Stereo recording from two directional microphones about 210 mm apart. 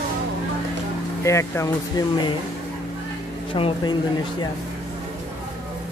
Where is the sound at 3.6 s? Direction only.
25° left (ahead or behind).